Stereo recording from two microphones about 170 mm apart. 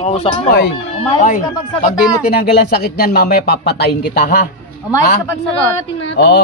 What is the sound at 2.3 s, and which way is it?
Speech, 65° left (ahead or behind).